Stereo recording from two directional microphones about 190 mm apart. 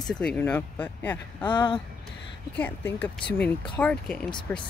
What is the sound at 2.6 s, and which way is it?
Speech, 10° left (ahead or behind).